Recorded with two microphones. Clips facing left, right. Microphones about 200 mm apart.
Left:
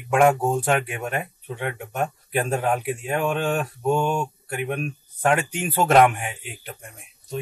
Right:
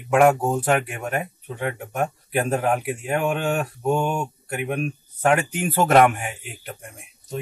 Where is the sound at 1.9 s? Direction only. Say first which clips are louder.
Right 1 dB; 10° right (ahead or behind).